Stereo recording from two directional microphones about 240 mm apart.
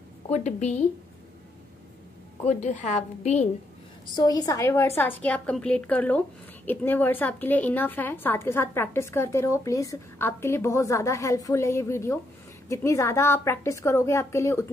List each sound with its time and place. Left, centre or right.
0.3 s a woman's voice: left
2.4 s a woman's voice: left
4.1 s a woman's voice: centre